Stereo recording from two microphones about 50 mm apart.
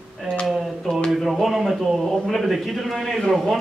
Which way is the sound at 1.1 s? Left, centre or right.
Centre.